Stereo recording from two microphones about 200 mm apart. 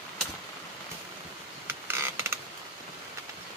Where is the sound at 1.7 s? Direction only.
10° right (ahead or behind).